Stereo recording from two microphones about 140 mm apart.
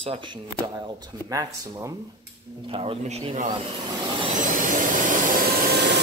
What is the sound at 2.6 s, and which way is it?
Speech, 40° right (ahead or behind).